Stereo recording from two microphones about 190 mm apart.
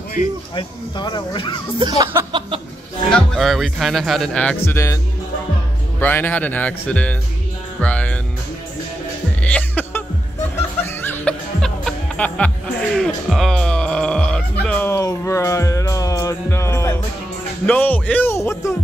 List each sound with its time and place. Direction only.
0.6 s speech: 25° left (ahead or behind)
1.8 s a sound: 20° right (ahead or behind)
3.1 s speech: 5° left (ahead or behind)
4.6 s speech: 15° left (ahead or behind)
9.4 s music: 10° left (ahead or behind)
17.6 s speech: 10° left (ahead or behind)